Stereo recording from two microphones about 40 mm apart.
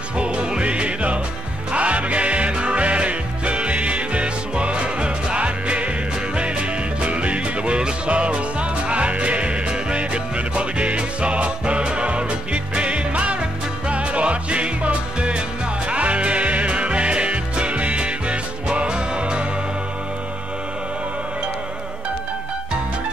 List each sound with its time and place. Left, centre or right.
0.2 s music: right